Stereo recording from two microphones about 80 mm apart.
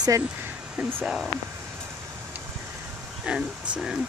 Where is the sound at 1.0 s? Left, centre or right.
Centre.